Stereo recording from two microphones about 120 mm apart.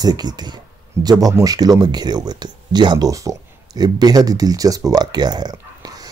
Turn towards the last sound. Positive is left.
turn(degrees=-30)  # may be behind; listen again after turning